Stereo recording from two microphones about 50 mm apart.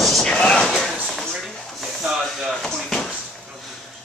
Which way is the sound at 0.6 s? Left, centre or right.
Centre.